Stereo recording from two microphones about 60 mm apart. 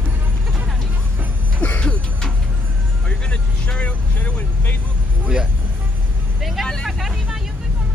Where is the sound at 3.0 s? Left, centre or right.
Centre.